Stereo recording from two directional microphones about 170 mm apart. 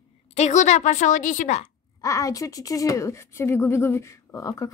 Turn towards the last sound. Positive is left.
turn(degrees=20)  # may be behind; listen again after turning